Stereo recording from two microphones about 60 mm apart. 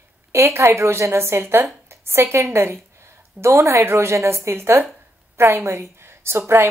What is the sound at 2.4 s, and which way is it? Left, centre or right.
A woman's voice, right.